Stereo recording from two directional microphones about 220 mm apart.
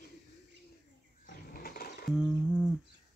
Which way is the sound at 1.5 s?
40° left (ahead or behind).